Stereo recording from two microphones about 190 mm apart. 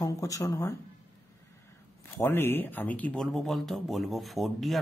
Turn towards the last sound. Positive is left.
turn(degrees=0)  # may be behind; listen again after turning